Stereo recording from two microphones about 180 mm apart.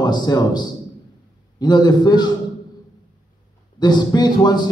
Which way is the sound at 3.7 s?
25° left (ahead or behind).